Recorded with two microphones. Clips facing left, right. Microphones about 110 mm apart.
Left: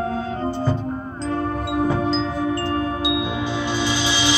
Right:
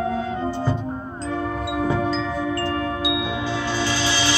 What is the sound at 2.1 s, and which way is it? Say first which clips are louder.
Music: left 2 dB; 25° left (ahead or behind).